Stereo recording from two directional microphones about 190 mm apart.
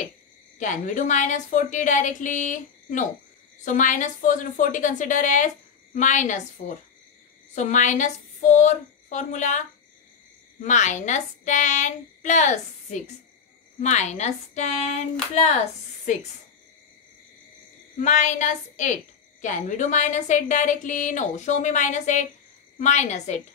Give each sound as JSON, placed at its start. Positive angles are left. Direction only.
{"t": 0.6, "sound": "a woman's voice", "side_deg": 40}
{"t": 7.5, "sound": "a woman's voice", "side_deg": 40}
{"t": 10.6, "sound": "a woman's voice", "side_deg": 40}
{"t": 17.9, "sound": "a woman's voice", "side_deg": 40}